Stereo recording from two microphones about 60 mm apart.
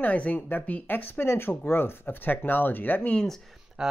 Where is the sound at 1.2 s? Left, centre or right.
Left.